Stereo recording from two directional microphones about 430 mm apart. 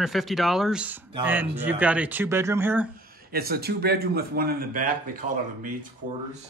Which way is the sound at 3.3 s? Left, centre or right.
Right.